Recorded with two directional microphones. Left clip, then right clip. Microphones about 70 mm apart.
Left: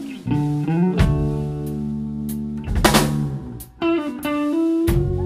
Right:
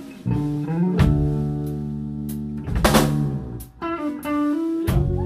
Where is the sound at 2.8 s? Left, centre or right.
Centre.